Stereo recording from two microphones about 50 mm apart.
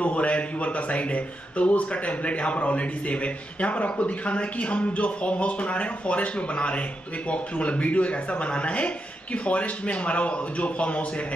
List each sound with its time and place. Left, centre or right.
0.0 s speech: left